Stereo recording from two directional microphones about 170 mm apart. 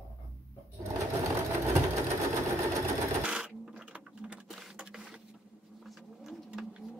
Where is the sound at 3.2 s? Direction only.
5° right (ahead or behind).